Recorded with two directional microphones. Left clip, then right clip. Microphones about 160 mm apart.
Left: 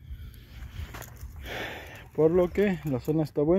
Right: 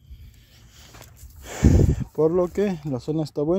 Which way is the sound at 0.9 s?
35° left (ahead or behind).